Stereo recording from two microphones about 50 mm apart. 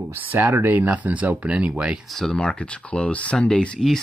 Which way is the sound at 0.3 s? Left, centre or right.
Right.